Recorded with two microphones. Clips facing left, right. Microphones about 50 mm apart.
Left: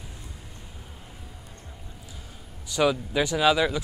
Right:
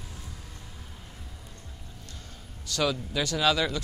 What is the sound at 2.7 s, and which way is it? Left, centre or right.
Speech, centre.